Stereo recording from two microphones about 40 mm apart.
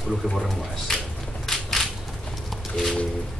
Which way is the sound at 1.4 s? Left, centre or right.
Centre.